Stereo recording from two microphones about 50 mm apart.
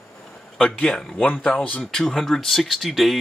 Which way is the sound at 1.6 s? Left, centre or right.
Left.